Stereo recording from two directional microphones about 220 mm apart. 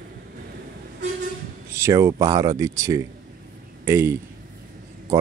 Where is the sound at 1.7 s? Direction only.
15° right (ahead or behind).